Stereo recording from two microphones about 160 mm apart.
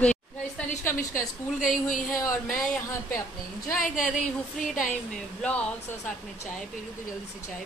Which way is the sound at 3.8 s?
55° left (ahead or behind).